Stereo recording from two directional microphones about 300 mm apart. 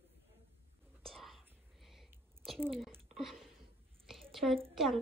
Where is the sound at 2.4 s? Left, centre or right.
Centre.